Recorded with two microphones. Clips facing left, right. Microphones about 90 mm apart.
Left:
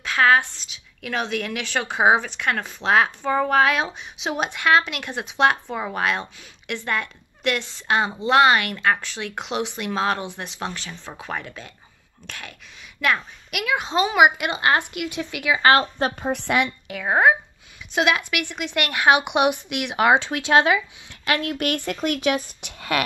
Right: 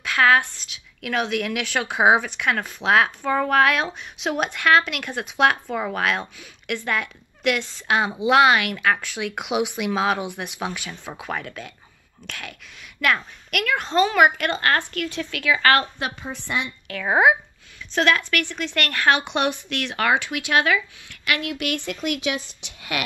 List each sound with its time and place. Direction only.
0.0 s a woman's voice: centre (ahead or behind); by 15.9 s 25° left (ahead or behind)
16.3 s speech: 65° left (ahead or behind)
16.8 s speech: 15° left (ahead or behind)
17.1 s a woman's voice: 5° right (ahead or behind)
17.9 s a woman's voice: 10° left (ahead or behind)
20.2 s speech: 30° left (ahead or behind)
21.4 s speech: 40° left (ahead or behind)